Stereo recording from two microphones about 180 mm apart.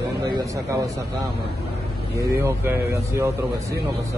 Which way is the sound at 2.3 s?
15° right (ahead or behind).